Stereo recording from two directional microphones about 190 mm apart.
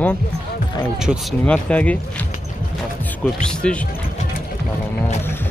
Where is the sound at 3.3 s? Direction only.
5° left (ahead or behind).